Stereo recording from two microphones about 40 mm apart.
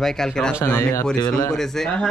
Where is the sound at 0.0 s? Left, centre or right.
Centre.